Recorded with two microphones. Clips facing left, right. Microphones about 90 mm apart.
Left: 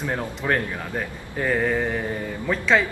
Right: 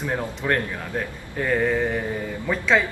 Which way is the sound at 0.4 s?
5° left (ahead or behind).